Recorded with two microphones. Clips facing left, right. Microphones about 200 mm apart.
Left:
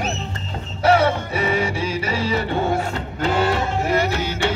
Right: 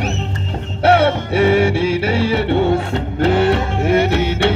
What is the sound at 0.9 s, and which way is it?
Music, 65° right (ahead or behind).